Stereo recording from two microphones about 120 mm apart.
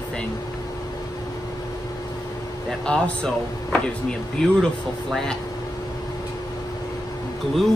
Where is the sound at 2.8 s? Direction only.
5° left (ahead or behind).